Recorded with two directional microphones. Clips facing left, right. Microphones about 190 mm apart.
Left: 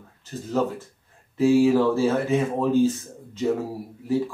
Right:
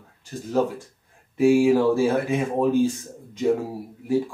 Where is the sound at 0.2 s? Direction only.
15° right (ahead or behind).